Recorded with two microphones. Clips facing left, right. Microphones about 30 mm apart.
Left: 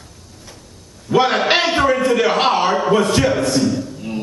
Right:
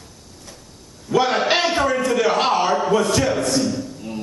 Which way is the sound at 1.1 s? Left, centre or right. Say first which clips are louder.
Left 3 dB; left.